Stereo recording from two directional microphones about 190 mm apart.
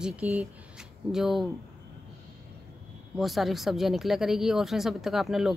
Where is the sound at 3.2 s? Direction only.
Centre (ahead or behind).